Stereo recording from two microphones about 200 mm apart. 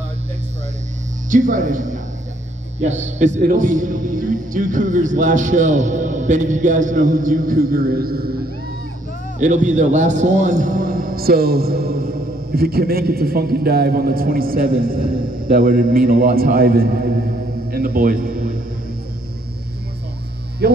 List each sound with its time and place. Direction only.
1.3 s a man's voice: 40° right (ahead or behind)
9.4 s a man's voice: 40° right (ahead or behind)
20.6 s a man's voice: 55° right (ahead or behind)